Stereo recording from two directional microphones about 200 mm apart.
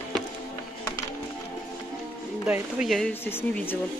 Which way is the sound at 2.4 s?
5° right (ahead or behind).